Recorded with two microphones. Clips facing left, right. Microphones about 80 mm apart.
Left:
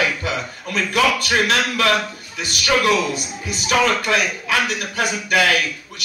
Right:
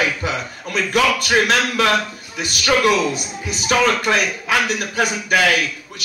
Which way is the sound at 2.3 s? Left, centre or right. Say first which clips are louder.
Right 1 dB; right.